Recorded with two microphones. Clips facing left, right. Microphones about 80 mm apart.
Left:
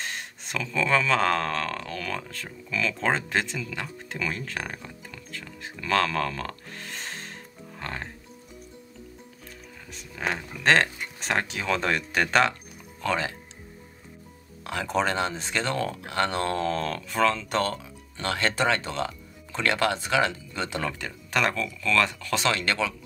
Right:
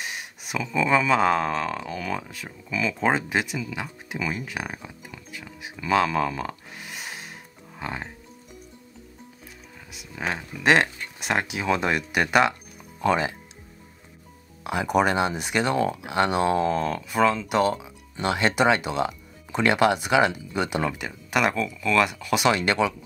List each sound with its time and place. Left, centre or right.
0.0 s speech: centre
9.9 s speech: centre
14.6 s speech: centre